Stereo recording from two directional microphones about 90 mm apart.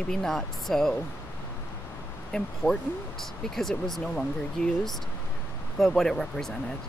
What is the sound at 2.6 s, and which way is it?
Speech, 25° left (ahead or behind).